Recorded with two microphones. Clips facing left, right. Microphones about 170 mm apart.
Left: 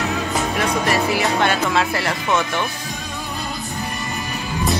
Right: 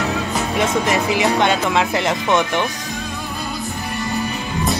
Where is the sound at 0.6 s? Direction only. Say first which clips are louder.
Right 3 dB; 20° right (ahead or behind).